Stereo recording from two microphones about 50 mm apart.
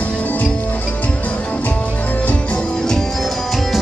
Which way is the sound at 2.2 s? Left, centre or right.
Left.